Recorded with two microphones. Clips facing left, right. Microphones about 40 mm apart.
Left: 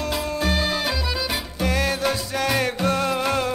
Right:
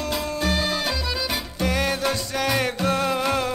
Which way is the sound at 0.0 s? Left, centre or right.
Centre.